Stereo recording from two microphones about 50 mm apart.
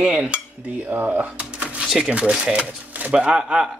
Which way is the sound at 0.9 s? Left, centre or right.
Right.